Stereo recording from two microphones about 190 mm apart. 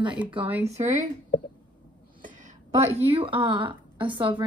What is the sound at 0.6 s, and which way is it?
Speech, 35° right (ahead or behind).